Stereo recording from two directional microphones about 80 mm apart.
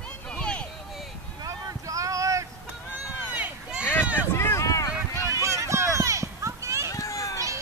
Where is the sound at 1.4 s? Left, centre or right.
Right.